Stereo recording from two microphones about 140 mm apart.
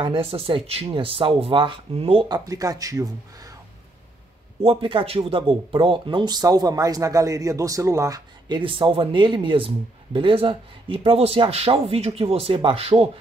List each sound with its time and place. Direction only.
0.0 s speech: 40° right (ahead or behind)
2.2 s speech: 30° right (ahead or behind)
4.6 s speech: 40° right (ahead or behind); by 8.2 s 20° right (ahead or behind)
8.5 s speech: 35° right (ahead or behind)